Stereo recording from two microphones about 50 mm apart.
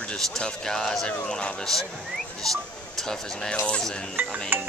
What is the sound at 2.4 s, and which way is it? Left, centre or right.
Speech, centre.